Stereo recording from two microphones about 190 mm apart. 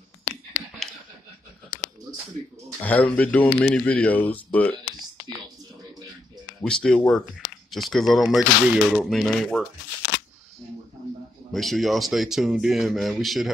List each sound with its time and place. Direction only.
0.8 s a sound: centre (ahead or behind)
2.8 s speech: 10° left (ahead or behind)
6.6 s speech: 5° left (ahead or behind)
11.5 s speech: centre (ahead or behind)